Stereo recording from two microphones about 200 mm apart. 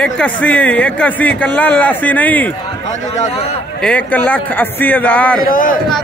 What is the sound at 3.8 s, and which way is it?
Speech, 5° left (ahead or behind).